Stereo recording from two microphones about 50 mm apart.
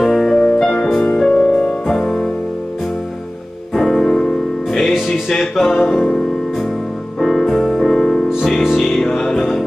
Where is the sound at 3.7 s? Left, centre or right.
Centre.